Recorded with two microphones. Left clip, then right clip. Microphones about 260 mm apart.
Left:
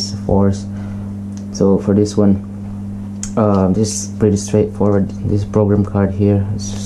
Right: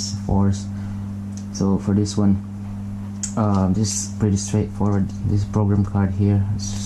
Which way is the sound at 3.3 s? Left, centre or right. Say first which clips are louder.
Left 8 dB; right.